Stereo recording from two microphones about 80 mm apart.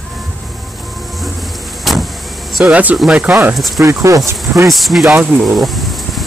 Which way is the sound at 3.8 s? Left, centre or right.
Right.